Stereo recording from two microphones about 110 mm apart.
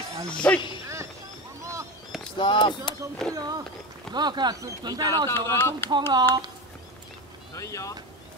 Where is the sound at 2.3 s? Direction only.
45° left (ahead or behind).